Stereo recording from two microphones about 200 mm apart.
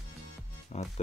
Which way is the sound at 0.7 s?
35° left (ahead or behind).